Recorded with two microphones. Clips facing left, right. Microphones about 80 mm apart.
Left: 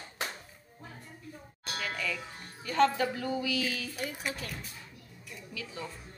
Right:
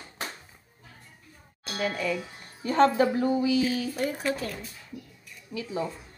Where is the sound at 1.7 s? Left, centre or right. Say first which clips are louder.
Right 7 dB; right.